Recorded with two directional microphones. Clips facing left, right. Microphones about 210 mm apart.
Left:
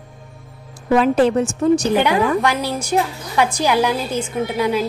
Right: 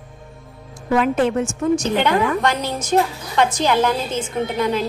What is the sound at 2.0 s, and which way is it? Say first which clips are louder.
A woman's voice: left 1 dB; 10° left (ahead or behind).